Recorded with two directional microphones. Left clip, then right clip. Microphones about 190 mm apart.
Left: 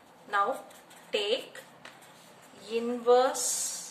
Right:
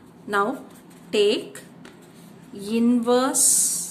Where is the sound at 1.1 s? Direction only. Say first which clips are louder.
Right 9 dB; 45° right (ahead or behind).